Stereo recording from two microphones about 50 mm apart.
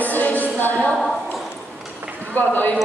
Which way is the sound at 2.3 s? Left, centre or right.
Left.